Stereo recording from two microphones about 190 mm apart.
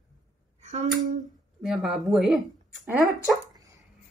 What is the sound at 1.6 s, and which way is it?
Speech, centre (ahead or behind).